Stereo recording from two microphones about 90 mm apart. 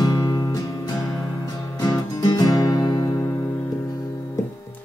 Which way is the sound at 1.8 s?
45° left (ahead or behind).